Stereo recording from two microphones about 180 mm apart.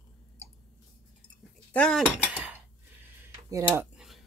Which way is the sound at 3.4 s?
15° right (ahead or behind).